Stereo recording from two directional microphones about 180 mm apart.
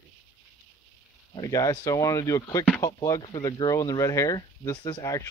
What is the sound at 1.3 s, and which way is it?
Speech, 20° left (ahead or behind).